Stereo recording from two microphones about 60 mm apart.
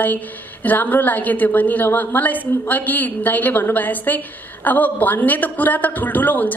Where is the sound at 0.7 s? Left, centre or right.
Left.